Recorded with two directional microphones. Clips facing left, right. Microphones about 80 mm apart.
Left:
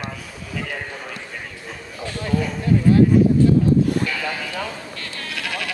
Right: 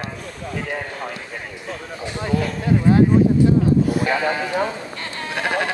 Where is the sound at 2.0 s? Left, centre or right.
Right.